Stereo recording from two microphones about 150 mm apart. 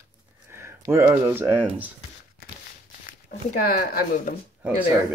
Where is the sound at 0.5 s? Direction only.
20° right (ahead or behind).